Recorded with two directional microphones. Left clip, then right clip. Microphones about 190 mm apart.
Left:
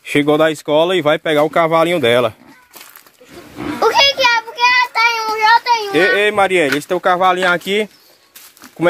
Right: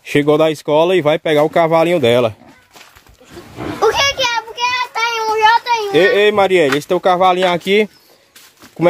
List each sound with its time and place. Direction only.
0.0 s speech: 25° right (ahead or behind)
3.8 s child singing: 15° left (ahead or behind)
5.9 s speech: 30° right (ahead or behind)